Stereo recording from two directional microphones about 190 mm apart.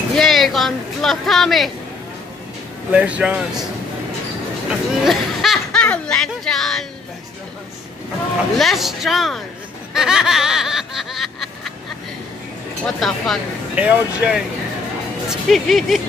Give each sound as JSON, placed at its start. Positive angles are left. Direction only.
{"t": 0.1, "sound": "a sound", "side_deg": 0}
{"t": 2.9, "sound": "snicker", "side_deg": -5}
{"t": 4.6, "sound": "speech", "side_deg": 0}
{"t": 8.5, "sound": "snicker", "side_deg": 0}
{"t": 12.8, "sound": "snicker", "side_deg": 0}